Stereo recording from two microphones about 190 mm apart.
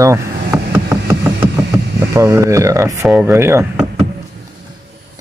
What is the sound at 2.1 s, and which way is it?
Speech, 15° right (ahead or behind).